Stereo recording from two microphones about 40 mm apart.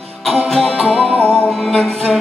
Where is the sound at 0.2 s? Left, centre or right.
Centre.